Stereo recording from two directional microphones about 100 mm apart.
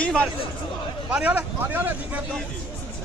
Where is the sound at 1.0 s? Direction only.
15° right (ahead or behind).